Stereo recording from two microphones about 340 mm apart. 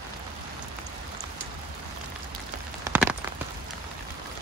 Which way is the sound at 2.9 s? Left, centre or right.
Centre.